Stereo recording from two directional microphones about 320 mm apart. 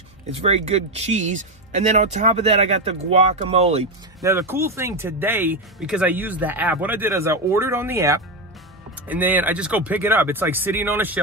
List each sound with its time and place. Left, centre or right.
0.4 s speech: centre
4.3 s speech: centre